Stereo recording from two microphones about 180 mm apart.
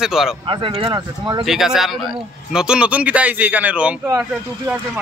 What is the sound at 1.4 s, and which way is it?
Speech, centre (ahead or behind).